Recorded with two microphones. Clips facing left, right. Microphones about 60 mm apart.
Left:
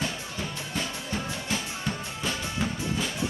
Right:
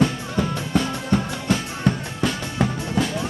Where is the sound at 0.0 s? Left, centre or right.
Right.